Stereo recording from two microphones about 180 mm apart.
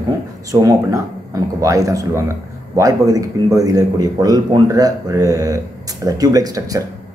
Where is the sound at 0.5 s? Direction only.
20° right (ahead or behind).